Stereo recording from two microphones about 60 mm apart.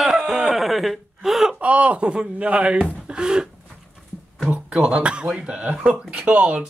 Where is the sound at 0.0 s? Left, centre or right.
Centre.